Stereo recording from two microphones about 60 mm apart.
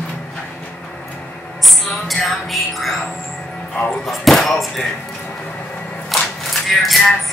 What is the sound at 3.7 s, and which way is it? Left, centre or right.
Speech, centre.